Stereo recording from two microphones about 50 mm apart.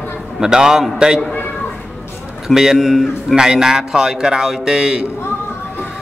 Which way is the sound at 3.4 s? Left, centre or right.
Centre.